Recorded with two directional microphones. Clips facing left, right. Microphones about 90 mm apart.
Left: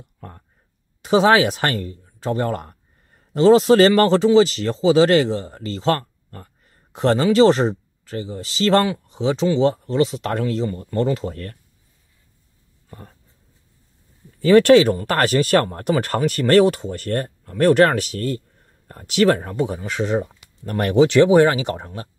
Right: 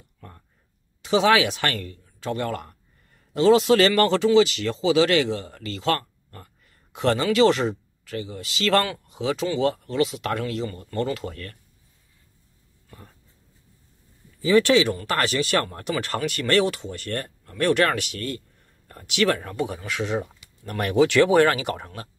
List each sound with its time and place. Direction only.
1.0 s speech: 40° left (ahead or behind)
14.4 s speech: 50° left (ahead or behind)
20.9 s speech: 20° left (ahead or behind)